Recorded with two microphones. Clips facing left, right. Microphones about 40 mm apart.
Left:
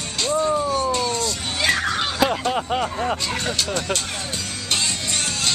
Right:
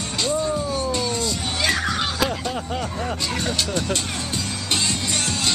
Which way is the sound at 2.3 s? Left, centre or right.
Left.